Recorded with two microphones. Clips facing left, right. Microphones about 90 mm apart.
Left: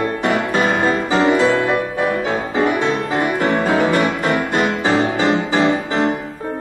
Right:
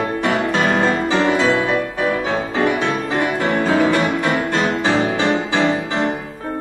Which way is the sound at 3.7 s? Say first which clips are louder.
Right 2 dB; 25° left (ahead or behind).